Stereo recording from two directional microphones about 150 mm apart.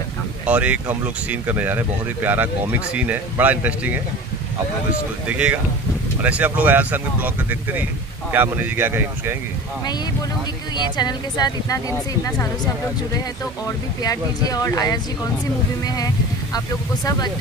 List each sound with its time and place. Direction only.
0.5 s speech: 10° right (ahead or behind)
5.3 s speech: 10° right (ahead or behind)
10.8 s speech: 30° left (ahead or behind)
13.7 s speech: 25° left (ahead or behind)